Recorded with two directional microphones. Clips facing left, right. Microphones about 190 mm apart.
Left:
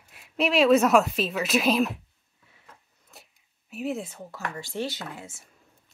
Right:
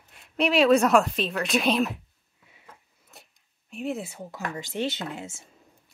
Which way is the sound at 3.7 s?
Centre (ahead or behind).